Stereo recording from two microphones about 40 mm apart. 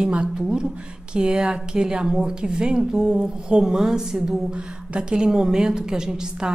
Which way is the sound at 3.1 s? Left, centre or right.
Right.